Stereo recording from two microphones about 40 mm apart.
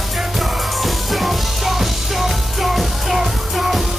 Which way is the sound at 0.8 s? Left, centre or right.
Centre.